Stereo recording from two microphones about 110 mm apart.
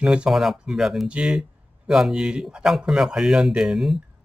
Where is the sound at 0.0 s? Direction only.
10° right (ahead or behind).